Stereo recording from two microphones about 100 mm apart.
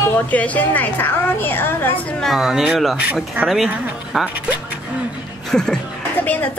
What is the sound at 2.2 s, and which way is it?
A woman's voice, centre (ahead or behind).